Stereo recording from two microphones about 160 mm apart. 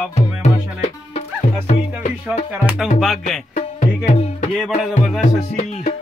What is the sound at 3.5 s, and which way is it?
Music, 40° left (ahead or behind).